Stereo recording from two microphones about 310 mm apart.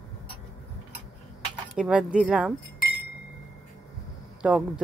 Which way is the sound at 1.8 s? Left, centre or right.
Centre.